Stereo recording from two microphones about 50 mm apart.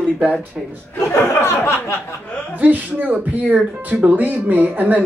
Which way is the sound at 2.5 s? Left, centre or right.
Right.